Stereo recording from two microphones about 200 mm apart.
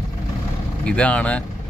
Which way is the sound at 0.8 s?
5° left (ahead or behind).